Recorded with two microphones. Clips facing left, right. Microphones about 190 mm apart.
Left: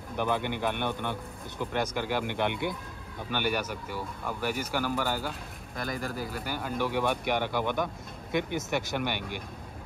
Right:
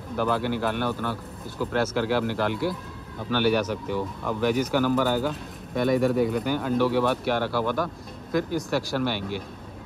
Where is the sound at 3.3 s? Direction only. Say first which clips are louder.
Right 8 dB; 10° left (ahead or behind).